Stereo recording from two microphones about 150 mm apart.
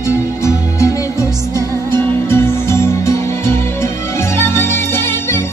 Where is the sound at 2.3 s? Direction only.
15° left (ahead or behind).